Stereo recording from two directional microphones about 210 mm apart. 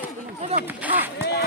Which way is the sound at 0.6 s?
10° right (ahead or behind).